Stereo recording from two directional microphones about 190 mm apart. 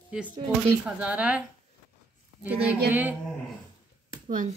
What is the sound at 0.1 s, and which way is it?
Speech, 5° right (ahead or behind).